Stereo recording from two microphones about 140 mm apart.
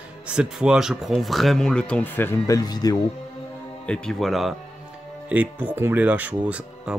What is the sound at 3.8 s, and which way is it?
Speech, 5° left (ahead or behind).